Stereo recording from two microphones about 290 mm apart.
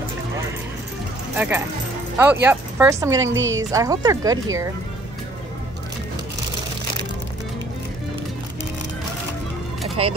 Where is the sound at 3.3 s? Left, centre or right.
Right.